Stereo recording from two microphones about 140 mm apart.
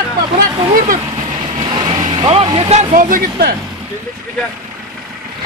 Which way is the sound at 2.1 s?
40° right (ahead or behind).